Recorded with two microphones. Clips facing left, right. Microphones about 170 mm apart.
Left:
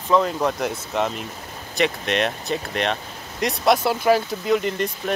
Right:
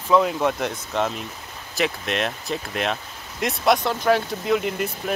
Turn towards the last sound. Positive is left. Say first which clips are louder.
# left 1 dB
turn(degrees=0)  # may be behind; listen again after turning